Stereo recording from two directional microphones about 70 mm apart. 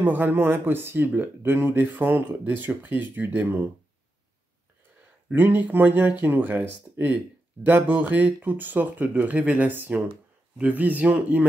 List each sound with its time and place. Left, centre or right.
0.0 s speech: right
5.3 s speech: right
7.6 s speech: right